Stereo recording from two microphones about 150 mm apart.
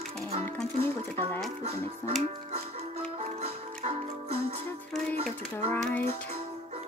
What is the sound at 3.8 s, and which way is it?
Music, 45° right (ahead or behind).